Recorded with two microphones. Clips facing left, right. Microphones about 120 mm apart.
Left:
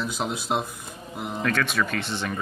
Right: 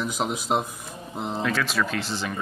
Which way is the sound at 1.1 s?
25° right (ahead or behind).